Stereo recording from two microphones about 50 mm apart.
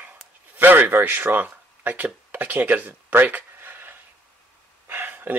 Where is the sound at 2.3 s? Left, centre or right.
Right.